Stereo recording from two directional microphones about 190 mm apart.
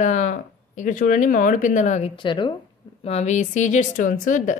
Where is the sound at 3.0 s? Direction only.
35° left (ahead or behind).